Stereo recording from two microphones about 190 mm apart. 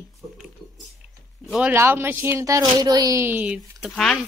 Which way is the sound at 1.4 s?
Centre (ahead or behind).